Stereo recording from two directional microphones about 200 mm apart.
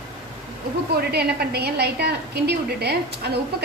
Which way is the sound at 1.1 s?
55° right (ahead or behind).